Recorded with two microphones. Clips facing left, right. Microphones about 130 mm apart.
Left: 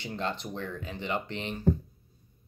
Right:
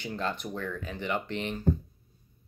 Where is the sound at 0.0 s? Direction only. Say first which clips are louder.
Right 1 dB; 25° left (ahead or behind).